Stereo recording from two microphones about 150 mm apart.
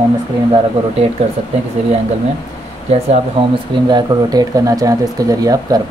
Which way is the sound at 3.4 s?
35° right (ahead or behind).